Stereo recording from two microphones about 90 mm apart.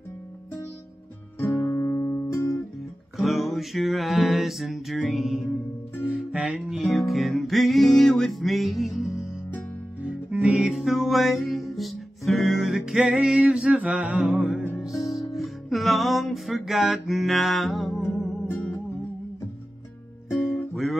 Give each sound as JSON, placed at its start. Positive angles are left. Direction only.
{"t": 1.4, "sound": "music", "side_deg": 35}
{"t": 3.2, "sound": "music", "side_deg": 0}